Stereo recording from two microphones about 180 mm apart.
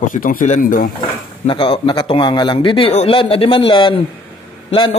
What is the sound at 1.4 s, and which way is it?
A man's voice, 30° left (ahead or behind).